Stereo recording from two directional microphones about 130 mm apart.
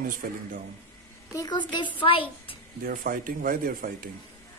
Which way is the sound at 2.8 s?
90° right.